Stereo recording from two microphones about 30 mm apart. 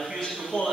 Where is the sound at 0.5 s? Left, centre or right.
Left.